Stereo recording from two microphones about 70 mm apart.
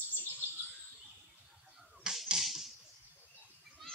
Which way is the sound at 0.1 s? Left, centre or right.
Left.